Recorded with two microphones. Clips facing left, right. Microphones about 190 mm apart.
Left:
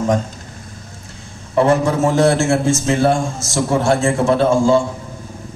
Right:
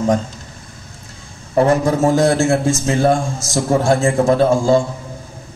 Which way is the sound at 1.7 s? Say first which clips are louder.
Right 1 dB; 40° right (ahead or behind).